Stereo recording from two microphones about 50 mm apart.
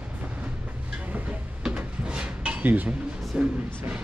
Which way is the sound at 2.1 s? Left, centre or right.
Right.